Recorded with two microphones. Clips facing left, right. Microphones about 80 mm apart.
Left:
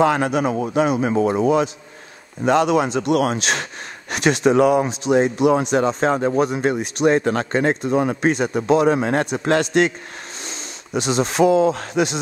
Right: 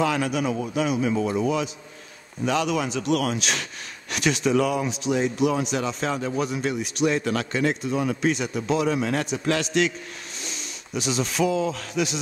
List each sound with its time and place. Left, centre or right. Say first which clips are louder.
0.0 s speech: left 6 dB; left